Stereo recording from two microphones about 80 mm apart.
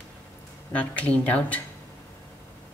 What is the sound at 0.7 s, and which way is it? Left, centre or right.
Speech, centre.